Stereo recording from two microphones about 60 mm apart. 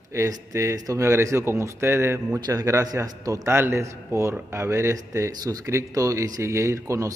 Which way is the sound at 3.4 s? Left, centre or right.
Right.